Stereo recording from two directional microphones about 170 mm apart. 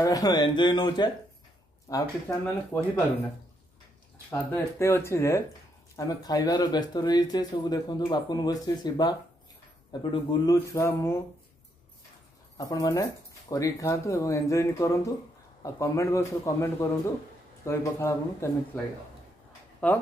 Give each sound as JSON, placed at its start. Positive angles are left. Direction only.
{"t": 0.0, "sound": "a man's voice", "side_deg": 20}
{"t": 4.3, "sound": "a man's voice", "side_deg": 15}
{"t": 10.1, "sound": "a man's voice", "side_deg": 25}
{"t": 12.5, "sound": "a man's voice", "side_deg": 20}
{"t": 19.8, "sound": "a man's voice", "side_deg": 5}